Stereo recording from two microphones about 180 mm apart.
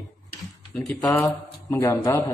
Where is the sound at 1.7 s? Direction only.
20° left (ahead or behind).